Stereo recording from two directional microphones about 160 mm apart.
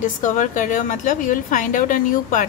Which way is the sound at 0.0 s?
55° left (ahead or behind).